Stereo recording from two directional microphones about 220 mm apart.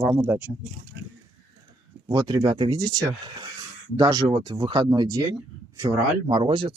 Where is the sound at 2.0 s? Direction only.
20° right (ahead or behind).